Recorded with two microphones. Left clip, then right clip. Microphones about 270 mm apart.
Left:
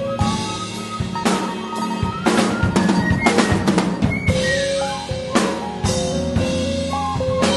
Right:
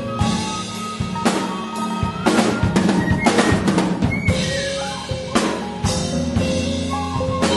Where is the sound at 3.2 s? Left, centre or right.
Centre.